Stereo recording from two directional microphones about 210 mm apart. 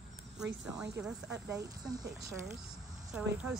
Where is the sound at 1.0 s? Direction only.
5° right (ahead or behind).